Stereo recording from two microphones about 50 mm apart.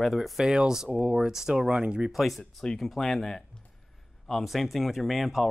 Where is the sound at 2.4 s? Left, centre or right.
Centre.